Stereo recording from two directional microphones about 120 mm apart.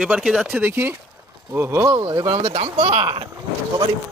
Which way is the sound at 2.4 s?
65° right (ahead or behind).